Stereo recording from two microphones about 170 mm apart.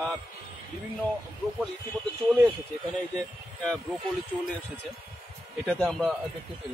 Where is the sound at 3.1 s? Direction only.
5° left (ahead or behind).